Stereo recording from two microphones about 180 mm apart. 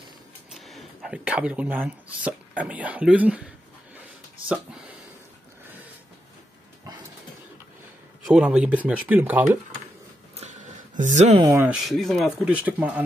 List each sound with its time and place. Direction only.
0.5 s speech: centre (ahead or behind)
8.3 s speech: 5° right (ahead or behind)
10.3 s a sound: 40° right (ahead or behind)
11.4 s speech: 15° right (ahead or behind)
11.7 s speech: centre (ahead or behind)